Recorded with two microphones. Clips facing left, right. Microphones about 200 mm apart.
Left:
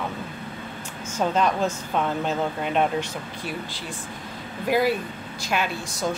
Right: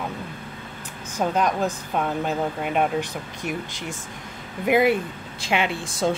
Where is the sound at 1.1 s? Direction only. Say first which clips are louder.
Even; 10° right (ahead or behind).